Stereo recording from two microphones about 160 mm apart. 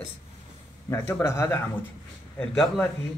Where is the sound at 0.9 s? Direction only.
15° left (ahead or behind).